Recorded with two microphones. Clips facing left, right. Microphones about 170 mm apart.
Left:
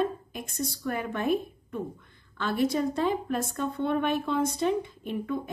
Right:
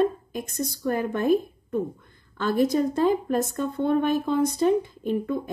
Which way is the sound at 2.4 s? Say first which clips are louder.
Right 4 dB; 40° right (ahead or behind).